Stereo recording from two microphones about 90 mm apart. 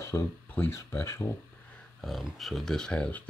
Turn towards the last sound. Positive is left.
turn(degrees=10)  # may be behind; listen again after turning